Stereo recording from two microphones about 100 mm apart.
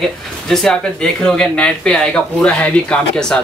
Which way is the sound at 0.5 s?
5° left (ahead or behind).